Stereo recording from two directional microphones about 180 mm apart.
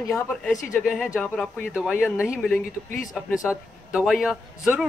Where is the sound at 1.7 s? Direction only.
5° right (ahead or behind).